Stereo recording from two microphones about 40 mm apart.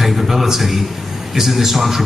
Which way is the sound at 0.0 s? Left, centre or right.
Centre.